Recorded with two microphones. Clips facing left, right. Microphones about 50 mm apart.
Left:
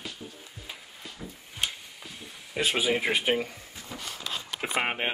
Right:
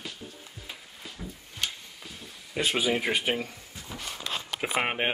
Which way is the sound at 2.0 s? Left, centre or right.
Centre.